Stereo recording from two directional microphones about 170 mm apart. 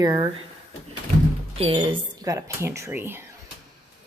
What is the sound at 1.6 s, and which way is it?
Speech, 35° right (ahead or behind).